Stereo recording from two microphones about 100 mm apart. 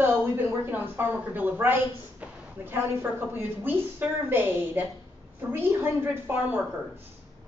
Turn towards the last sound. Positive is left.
turn(degrees=-20)  # may be behind; listen again after turning